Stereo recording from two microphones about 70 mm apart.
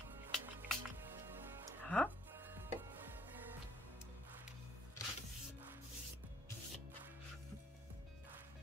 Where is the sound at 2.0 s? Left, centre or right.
Right.